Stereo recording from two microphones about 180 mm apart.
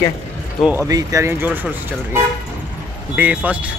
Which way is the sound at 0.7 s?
15° right (ahead or behind).